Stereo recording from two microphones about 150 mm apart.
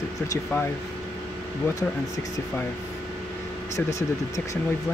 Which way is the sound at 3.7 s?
20° left (ahead or behind).